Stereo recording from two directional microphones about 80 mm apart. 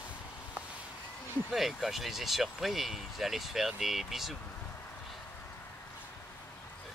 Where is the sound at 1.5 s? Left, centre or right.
Centre.